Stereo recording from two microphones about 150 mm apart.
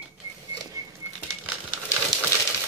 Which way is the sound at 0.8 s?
20° right (ahead or behind).